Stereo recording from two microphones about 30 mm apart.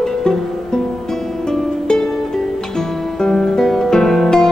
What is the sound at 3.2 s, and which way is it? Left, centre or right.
Music, left.